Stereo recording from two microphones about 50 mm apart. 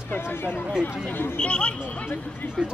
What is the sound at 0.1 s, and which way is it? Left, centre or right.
Speech, left.